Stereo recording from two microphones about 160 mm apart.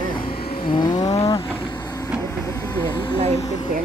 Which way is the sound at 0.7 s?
25° left (ahead or behind).